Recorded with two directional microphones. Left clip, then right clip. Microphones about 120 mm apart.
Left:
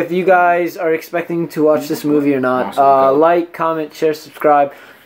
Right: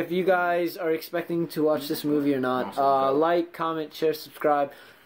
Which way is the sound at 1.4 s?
25° right (ahead or behind).